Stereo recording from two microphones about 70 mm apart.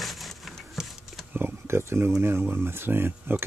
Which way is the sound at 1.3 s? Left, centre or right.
Right.